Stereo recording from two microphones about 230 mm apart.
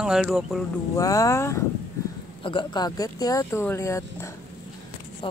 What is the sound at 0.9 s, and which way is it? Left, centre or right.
Speech, centre.